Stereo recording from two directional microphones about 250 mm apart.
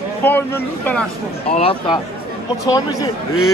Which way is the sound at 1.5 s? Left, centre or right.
Left.